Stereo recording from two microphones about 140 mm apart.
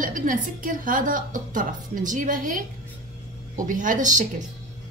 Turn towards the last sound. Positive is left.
turn(degrees=-65)  # may be behind; listen again after turning